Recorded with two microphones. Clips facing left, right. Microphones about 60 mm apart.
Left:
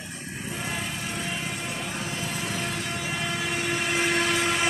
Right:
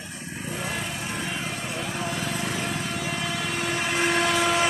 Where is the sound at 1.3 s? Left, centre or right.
Centre.